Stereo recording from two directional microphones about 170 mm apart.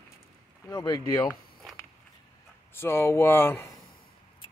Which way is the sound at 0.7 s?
20° left (ahead or behind).